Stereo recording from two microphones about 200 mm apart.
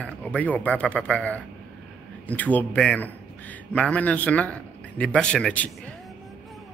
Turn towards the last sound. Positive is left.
turn(degrees=5)  # may be behind; listen again after turning